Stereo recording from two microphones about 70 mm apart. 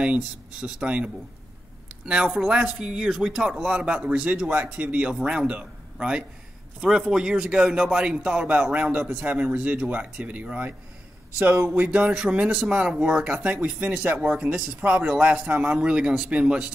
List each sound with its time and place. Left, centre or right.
0.0 s a man's voice: centre
11.7 s a man's voice: centre